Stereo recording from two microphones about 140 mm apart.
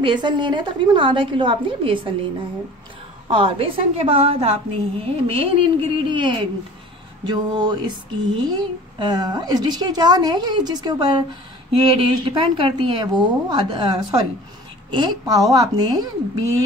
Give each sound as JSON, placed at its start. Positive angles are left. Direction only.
{"t": 0.0, "sound": "speech", "side_deg": -35}
{"t": 3.3, "sound": "speech", "side_deg": -40}